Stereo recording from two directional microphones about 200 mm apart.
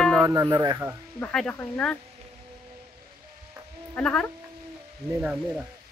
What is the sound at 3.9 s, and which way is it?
Speech, 5° left (ahead or behind).